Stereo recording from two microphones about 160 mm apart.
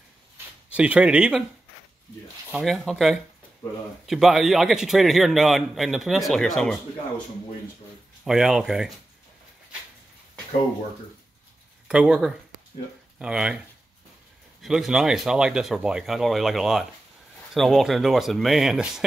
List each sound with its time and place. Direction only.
0.7 s speech: 10° right (ahead or behind)
2.5 s a man's voice: centre (ahead or behind)
8.2 s a man's voice: 5° right (ahead or behind)
11.9 s a man's voice: 5° right (ahead or behind)
14.6 s a man's voice: centre (ahead or behind)